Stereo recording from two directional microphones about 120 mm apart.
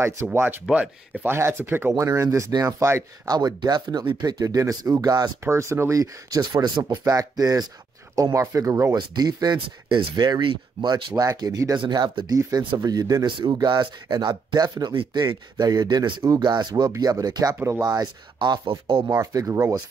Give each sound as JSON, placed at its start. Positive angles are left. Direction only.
{"t": 0.0, "sound": "speech", "side_deg": -20}
{"t": 5.4, "sound": "speech", "side_deg": -25}
{"t": 11.8, "sound": "speech", "side_deg": -40}
{"t": 19.0, "sound": "speech", "side_deg": -30}